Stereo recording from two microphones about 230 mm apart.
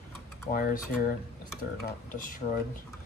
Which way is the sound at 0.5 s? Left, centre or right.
Left.